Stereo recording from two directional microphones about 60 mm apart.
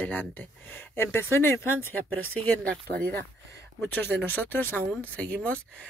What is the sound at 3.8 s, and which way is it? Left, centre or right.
Speech, left.